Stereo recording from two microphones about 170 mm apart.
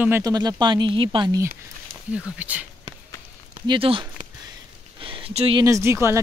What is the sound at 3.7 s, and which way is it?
Speech, 30° right (ahead or behind).